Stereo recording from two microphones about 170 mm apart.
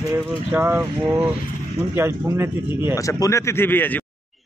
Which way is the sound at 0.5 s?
10° right (ahead or behind).